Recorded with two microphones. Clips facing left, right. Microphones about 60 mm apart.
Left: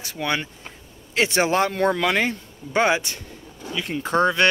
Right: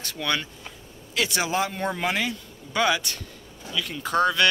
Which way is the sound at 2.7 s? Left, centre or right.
Left.